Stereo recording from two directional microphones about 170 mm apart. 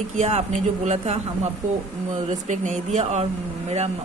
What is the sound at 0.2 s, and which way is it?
A woman's voice, 40° right (ahead or behind).